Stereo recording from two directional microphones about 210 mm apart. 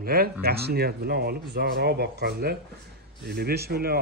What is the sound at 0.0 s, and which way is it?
Speech, 45° right (ahead or behind).